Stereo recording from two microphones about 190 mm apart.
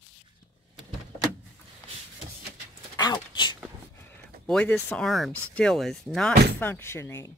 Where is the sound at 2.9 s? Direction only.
25° left (ahead or behind).